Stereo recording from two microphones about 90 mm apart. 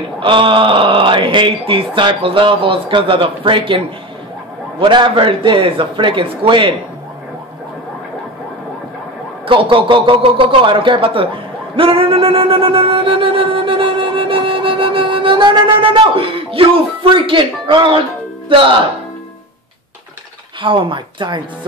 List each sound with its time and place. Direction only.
0.2 s speech: 70° right (ahead or behind)
9.5 s music: 75° right (ahead or behind)
20.6 s speech: 65° right (ahead or behind)